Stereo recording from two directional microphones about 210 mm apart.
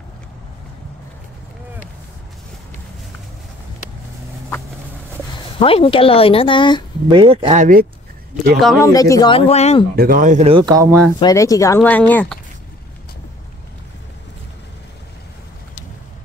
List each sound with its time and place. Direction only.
5.6 s speech: 25° left (ahead or behind)
7.1 s speech: 25° right (ahead or behind)
8.7 s speech: 15° left (ahead or behind)
9.5 s speech: 30° left (ahead or behind)
9.9 s speech: 45° right (ahead or behind); by 11.1 s 15° right (ahead or behind)
11.1 s speech: 15° left (ahead or behind)